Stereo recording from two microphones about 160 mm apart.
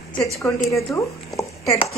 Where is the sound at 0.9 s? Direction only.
20° left (ahead or behind).